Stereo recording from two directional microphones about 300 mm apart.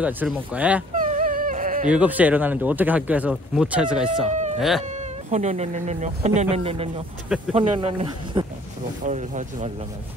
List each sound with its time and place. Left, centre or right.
0.0 s speech: centre
0.9 s dog: right
1.9 s speech: centre
4.3 s a sound: right
4.6 s speech: centre
4.8 s speech: right
7.2 s speech: centre
7.5 s speech: centre